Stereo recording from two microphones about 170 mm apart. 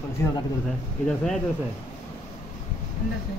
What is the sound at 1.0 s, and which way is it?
Speech, 5° left (ahead or behind).